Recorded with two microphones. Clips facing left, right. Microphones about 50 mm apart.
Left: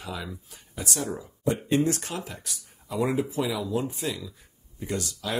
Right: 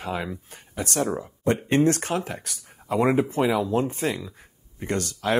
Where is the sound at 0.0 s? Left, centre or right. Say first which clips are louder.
Right 6 dB; right.